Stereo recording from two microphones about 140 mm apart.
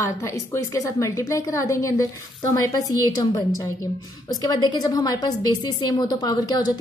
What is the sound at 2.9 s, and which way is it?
Speech, 25° left (ahead or behind).